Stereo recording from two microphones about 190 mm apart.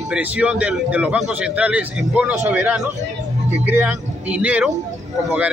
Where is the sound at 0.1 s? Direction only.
5° right (ahead or behind).